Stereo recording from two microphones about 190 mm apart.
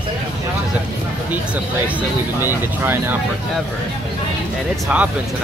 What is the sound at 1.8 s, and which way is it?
Speech, 10° right (ahead or behind).